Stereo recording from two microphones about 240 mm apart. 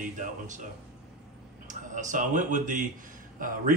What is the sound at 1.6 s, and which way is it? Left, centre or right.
A man's voice, right.